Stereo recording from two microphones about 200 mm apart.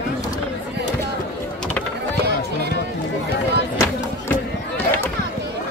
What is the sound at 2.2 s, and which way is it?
Run, 55° right (ahead or behind).